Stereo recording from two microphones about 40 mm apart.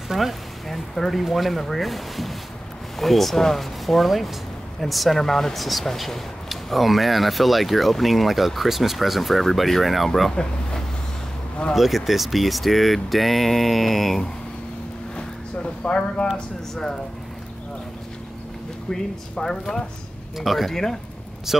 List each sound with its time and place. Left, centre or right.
0.1 s speech: centre
10.3 s speech: centre
11.7 s speech: centre
15.1 s a sound: left
16.7 s speech: centre
18.9 s speech: centre
20.3 s speech: centre
20.7 s speech: centre
21.5 s speech: centre